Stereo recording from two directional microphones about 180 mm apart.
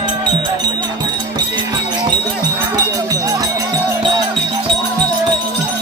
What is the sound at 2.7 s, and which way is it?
Music, 20° right (ahead or behind).